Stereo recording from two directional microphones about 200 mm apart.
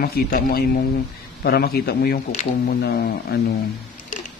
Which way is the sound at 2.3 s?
40° left (ahead or behind).